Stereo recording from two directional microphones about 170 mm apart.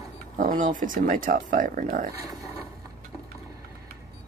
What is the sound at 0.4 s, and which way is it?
Speech, 50° right (ahead or behind).